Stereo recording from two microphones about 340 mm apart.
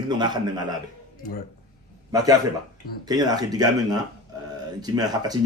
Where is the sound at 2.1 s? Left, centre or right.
Centre.